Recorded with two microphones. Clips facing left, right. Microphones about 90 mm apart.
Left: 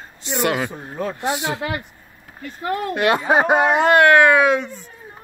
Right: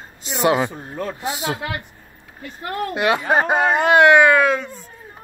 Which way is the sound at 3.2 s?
10° left (ahead or behind).